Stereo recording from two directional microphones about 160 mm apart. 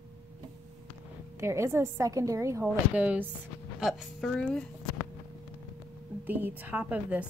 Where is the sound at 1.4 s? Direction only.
15° right (ahead or behind).